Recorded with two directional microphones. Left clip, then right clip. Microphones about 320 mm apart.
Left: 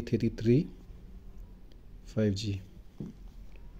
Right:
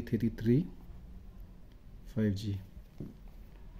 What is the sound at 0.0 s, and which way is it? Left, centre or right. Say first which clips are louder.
Speech: left 4 dB; centre.